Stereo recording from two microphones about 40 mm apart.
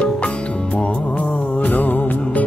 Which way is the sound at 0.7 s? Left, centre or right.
Left.